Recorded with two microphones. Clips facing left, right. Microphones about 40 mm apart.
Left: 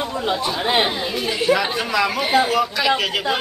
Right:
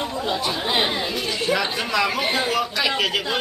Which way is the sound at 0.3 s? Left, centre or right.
Left.